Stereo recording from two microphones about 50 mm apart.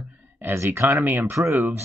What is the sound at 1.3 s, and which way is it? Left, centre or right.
Speech, right.